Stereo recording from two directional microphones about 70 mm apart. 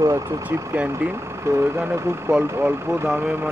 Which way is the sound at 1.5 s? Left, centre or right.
Right.